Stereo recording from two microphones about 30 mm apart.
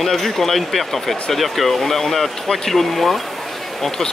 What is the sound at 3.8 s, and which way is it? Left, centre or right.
Speech, centre.